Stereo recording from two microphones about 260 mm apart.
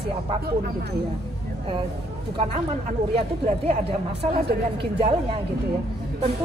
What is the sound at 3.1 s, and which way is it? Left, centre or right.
Speech, right.